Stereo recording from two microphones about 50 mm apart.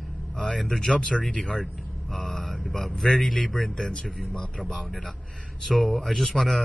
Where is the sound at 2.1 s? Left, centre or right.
Centre.